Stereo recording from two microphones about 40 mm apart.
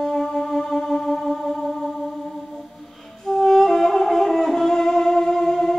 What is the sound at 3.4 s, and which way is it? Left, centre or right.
Music, centre.